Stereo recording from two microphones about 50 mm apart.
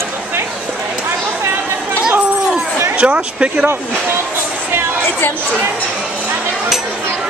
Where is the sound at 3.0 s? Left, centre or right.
Right.